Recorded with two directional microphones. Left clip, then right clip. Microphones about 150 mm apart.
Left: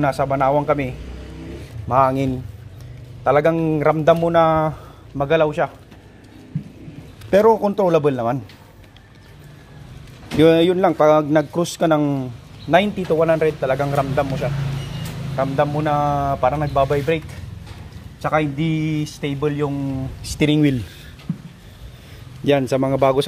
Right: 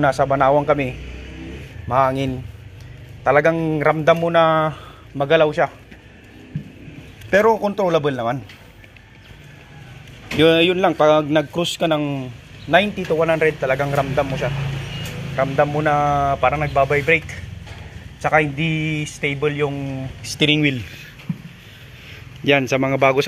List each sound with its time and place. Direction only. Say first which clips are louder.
0.0 s a man's voice: right 2 dB; 5° left (ahead or behind)
1.9 s speech: left 1 dB; 25° left (ahead or behind)
3.3 s speech: even; 15° left (ahead or behind)
5.1 s a man's voice: right 2 dB; 10° left (ahead or behind)
7.2 s a man's voice: left 1 dB; 40° left (ahead or behind)
10.4 s a man's voice: left 1 dB; 35° left (ahead or behind)
10.8 s a man's voice: even; 15° left (ahead or behind)
11.6 s a man's voice: left 2 dB; 35° left (ahead or behind)
15.3 s a man's voice: right 2 dB; 5° left (ahead or behind)
18.2 s a man's voice: right 3 dB; 10° left (ahead or behind)
20.3 s a man's voice: right 1 dB; 40° left (ahead or behind)
22.4 s speech: right 1 dB; 25° left (ahead or behind)